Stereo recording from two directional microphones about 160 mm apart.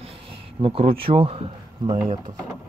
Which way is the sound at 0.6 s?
35° right (ahead or behind).